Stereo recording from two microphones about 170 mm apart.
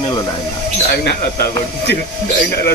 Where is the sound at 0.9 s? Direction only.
65° left (ahead or behind).